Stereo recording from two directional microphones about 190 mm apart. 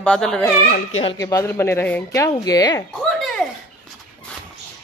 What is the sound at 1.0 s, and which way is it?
Speech, 25° left (ahead or behind).